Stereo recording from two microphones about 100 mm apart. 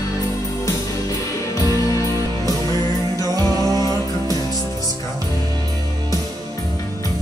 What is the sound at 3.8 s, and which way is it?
Music, 35° left (ahead or behind).